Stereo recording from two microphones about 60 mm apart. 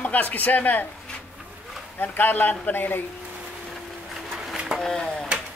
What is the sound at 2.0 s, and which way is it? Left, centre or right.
A man's voice, left.